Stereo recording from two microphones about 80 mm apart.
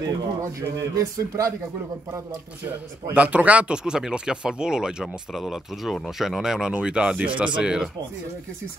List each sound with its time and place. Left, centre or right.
0.0 s speech: right
3.2 s speech: centre